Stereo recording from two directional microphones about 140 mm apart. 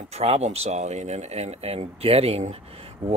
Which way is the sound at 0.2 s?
45° right (ahead or behind).